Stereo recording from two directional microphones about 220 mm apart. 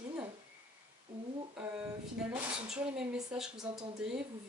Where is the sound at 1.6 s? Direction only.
5° right (ahead or behind).